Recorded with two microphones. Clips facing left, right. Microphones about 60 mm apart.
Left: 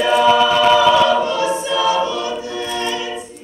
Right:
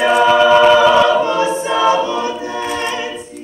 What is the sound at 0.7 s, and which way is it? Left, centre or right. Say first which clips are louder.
Choir: right 2 dB; right.